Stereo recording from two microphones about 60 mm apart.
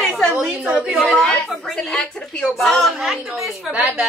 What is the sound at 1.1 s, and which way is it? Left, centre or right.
A woman's voice, centre.